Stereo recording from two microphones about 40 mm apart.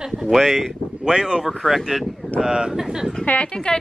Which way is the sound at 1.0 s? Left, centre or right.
Centre.